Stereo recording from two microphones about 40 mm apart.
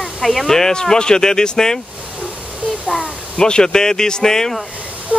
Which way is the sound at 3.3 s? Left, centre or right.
Centre.